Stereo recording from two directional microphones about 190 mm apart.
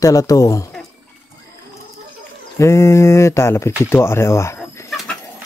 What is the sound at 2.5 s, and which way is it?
Speech, 15° left (ahead or behind).